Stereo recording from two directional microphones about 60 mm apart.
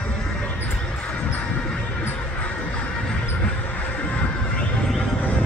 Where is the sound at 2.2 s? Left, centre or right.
Left.